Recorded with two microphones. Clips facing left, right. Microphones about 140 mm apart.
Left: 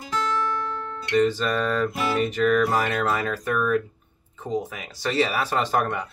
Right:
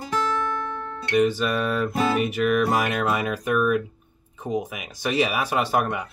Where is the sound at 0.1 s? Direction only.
50° right (ahead or behind).